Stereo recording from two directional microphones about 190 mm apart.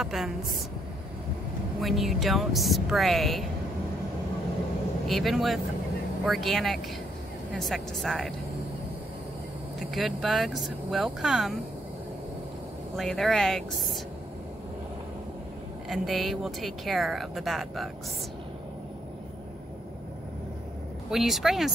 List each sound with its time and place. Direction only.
0.0 s speech: centre (ahead or behind)
1.8 s speech: centre (ahead or behind)
5.0 s speech: centre (ahead or behind)
9.8 s speech: centre (ahead or behind)
12.9 s speech: centre (ahead or behind)
15.9 s speech: centre (ahead or behind)
21.1 s speech: centre (ahead or behind)